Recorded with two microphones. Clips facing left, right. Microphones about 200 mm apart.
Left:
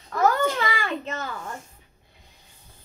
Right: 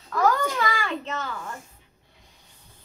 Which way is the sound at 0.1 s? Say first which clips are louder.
Left 1 dB; 25° left (ahead or behind).